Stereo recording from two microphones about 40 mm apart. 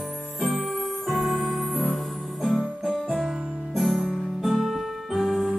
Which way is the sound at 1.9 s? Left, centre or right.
Centre.